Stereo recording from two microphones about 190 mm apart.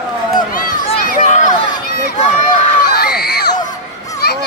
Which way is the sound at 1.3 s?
40° left (ahead or behind).